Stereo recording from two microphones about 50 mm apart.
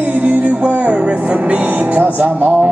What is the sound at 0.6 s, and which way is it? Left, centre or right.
Music, right.